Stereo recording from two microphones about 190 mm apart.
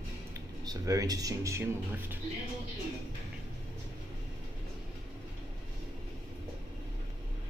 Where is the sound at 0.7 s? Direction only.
20° right (ahead or behind).